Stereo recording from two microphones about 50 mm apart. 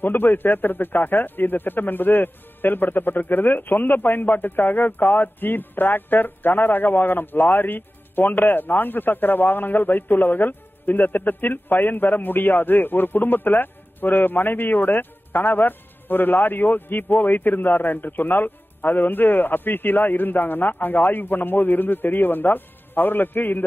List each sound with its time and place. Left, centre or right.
0.0 s speech: left